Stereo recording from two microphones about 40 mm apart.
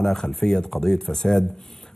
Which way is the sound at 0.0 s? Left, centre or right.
Centre.